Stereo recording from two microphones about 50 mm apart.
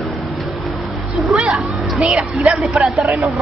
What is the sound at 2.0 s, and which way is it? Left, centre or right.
Speech, centre.